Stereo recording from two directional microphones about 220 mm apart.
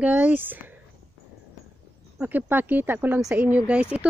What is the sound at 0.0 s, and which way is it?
Speech, 5° right (ahead or behind).